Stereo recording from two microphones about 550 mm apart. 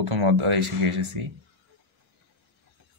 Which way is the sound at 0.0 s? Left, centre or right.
Right.